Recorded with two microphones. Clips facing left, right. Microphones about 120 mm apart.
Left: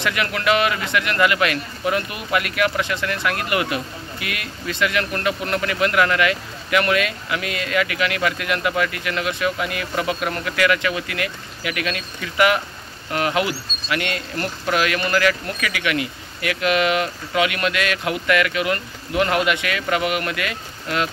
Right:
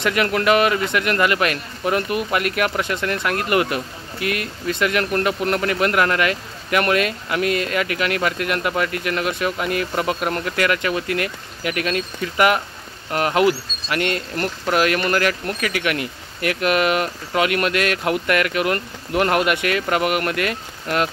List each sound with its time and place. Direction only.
0.0 s a man's voice: 40° right (ahead or behind)